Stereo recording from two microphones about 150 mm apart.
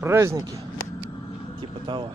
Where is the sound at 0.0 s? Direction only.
15° right (ahead or behind).